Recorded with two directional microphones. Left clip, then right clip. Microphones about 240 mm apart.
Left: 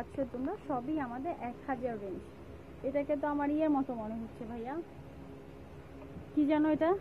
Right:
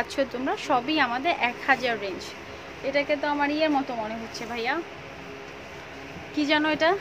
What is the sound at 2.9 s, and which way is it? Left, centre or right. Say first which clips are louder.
Speech: right 8 dB; left.